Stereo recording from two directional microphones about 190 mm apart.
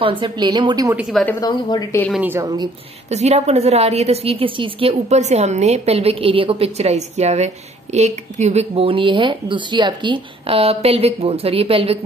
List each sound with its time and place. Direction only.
0.0 s a woman's voice: 25° right (ahead or behind)
1.4 s a woman's voice: 20° left (ahead or behind)
2.2 s a woman's voice: 10° right (ahead or behind)
3.1 s a woman's voice: 35° right (ahead or behind)